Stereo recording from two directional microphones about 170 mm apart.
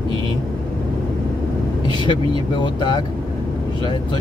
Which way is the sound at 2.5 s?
25° left (ahead or behind).